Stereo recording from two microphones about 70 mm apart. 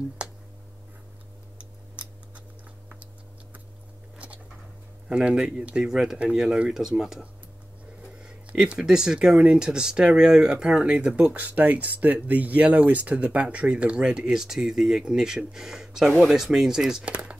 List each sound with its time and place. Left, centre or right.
0.2 s a sound: centre
1.6 s scissors: right
5.0 s speech: centre
17.0 s speech: right